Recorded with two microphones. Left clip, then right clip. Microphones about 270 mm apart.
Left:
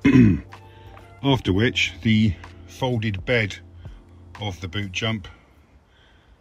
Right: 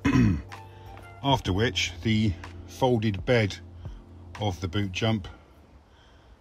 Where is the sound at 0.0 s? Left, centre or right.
Centre.